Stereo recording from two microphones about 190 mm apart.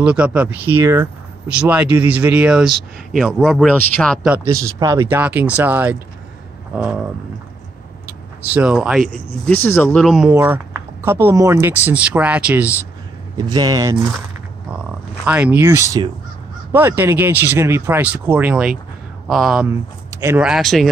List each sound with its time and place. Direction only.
0.0 s speech: 5° right (ahead or behind)
4.3 s speech: 15° right (ahead or behind)
8.5 s speech: 5° right (ahead or behind)
9.5 s speech: 10° left (ahead or behind)
10.0 s speech: centre (ahead or behind)
13.4 s speech: 20° right (ahead or behind)
15.2 s speech: 5° right (ahead or behind)
19.7 s speech: 15° right (ahead or behind); by 20.9 s centre (ahead or behind)